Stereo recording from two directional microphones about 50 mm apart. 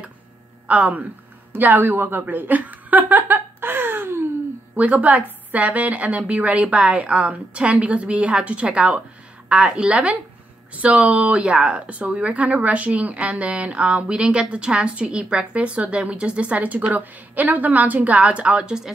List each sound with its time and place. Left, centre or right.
0.7 s speech: right
1.5 s speech: right
2.2 s chuckle: right
4.7 s speech: right